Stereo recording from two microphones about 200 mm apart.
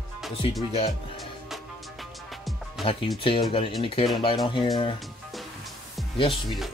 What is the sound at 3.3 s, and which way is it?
Speech, 25° left (ahead or behind).